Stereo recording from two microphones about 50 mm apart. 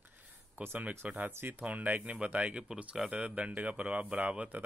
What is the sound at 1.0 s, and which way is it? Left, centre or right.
Speech, right.